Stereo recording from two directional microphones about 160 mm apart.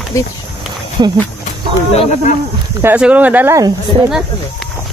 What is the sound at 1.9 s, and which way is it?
Speech, 40° left (ahead or behind).